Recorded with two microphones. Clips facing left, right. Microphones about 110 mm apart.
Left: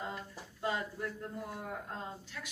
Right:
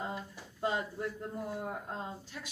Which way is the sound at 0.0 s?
25° right (ahead or behind).